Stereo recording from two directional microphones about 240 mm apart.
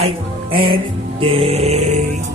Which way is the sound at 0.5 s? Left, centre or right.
Right.